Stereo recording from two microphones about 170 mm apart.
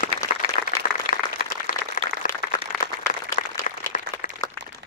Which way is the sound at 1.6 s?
50° left (ahead or behind).